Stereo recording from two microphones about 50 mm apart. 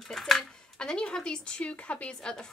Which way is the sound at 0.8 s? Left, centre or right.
Centre.